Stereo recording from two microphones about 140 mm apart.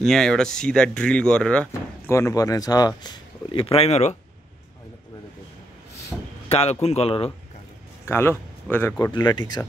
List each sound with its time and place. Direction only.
0.0 s speech: 5° left (ahead or behind)
1.7 s speech: 20° left (ahead or behind)
3.5 s a man's voice: 45° left (ahead or behind)
6.5 s a man's voice: 50° left (ahead or behind)
8.0 s speech: 15° left (ahead or behind)
8.9 s speech: 30° left (ahead or behind)